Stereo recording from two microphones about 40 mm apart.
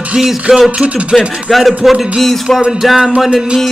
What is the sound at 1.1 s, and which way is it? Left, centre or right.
Speech, centre.